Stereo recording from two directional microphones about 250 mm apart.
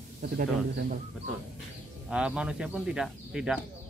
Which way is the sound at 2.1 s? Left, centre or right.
Centre.